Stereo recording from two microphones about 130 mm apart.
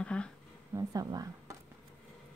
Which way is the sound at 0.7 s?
25° right (ahead or behind).